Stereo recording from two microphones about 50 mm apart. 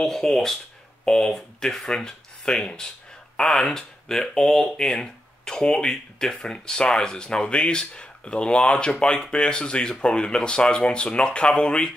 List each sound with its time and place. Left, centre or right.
0.0 s speech: centre